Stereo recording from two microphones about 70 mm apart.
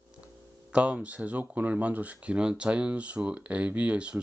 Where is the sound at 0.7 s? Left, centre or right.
Centre.